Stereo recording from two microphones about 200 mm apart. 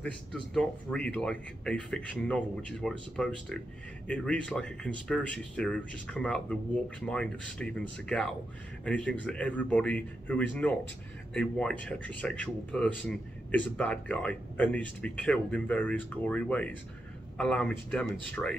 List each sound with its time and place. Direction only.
0.0 s speech: 5° left (ahead or behind)